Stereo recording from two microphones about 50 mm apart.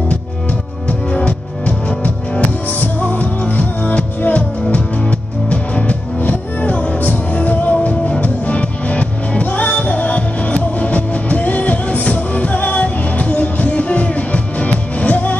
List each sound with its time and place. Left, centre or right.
0.8 s music: left